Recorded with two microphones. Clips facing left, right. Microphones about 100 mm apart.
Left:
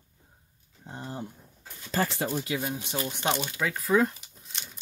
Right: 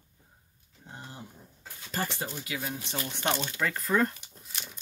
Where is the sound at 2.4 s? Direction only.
25° left (ahead or behind).